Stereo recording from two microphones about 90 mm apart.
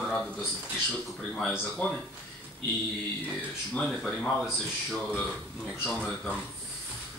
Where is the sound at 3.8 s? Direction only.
5° left (ahead or behind).